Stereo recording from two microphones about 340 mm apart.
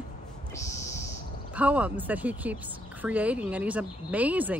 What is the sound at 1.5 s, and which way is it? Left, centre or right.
Speech, centre.